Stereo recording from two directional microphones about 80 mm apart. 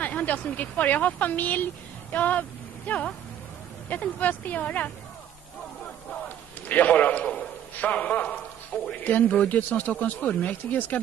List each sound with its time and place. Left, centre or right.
0.0 s a man's voice: centre
6.2 s a sound: centre
7.7 s a man's voice: centre